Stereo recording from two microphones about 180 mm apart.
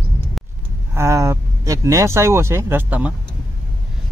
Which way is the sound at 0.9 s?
15° right (ahead or behind).